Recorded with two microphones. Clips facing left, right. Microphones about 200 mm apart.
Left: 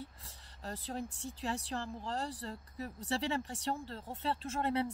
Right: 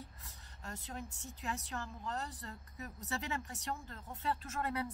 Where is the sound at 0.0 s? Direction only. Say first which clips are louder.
Left 5 dB; 30° left (ahead or behind).